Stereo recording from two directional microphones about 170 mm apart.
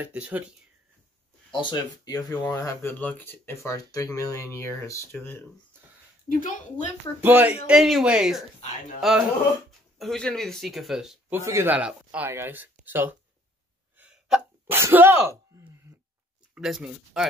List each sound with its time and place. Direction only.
0.0 s speech: 10° right (ahead or behind)
1.5 s speech: 25° left (ahead or behind)
6.2 s a woman's voice: 50° left (ahead or behind)
7.2 s a woman's voice: 10° right (ahead or behind)
11.4 s speech: 15° right (ahead or behind)
13.9 s sneeze: 10° right (ahead or behind)
16.5 s a woman's voice: 5° right (ahead or behind)